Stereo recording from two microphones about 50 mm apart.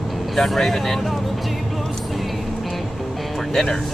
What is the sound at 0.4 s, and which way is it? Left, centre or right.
Speech, centre.